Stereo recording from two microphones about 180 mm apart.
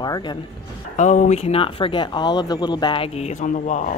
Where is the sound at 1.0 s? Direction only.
40° left (ahead or behind).